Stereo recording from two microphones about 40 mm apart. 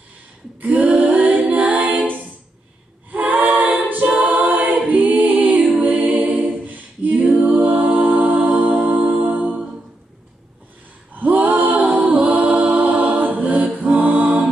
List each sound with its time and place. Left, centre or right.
0.6 s female singing: right
1.5 s a capella: right
3.1 s a capella: right
4.2 s choir: right
6.3 s a capella: right
7.5 s music: right
11.1 s a capella: right